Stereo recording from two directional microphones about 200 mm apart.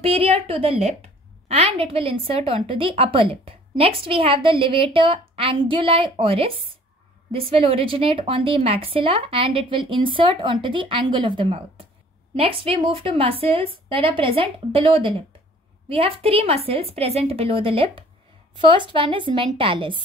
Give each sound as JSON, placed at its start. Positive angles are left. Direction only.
{"t": 0.0, "sound": "a woman's voice", "side_deg": -30}